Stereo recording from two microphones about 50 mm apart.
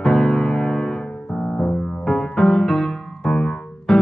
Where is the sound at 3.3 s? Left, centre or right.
Centre.